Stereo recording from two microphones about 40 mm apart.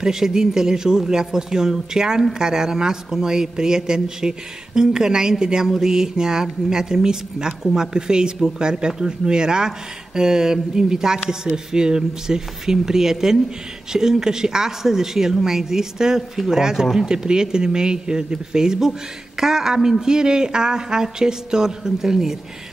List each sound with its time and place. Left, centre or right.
0.0 s speech: centre